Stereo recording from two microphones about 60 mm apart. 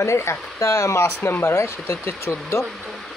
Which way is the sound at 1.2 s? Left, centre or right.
Left.